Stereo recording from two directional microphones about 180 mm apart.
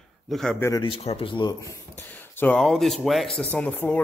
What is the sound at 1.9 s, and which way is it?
Speech, 5° left (ahead or behind).